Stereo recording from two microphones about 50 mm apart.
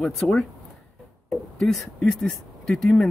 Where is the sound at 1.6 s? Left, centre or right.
Centre.